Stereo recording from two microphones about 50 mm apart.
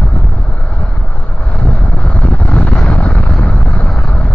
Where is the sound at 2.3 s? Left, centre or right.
Left.